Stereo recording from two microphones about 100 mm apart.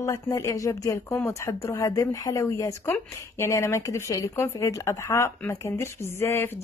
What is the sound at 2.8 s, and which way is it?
A woman's voice, 20° left (ahead or behind).